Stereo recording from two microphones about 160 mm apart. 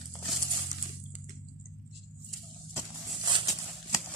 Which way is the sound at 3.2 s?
30° right (ahead or behind).